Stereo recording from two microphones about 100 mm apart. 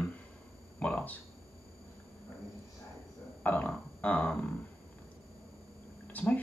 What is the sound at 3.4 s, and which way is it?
Burping, 15° left (ahead or behind).